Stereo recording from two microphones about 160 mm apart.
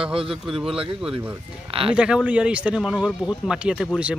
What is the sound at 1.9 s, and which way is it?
Speech, 5° right (ahead or behind).